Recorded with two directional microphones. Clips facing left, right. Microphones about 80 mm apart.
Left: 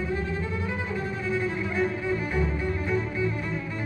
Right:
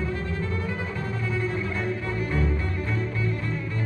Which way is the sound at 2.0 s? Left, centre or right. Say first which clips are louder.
Even; centre.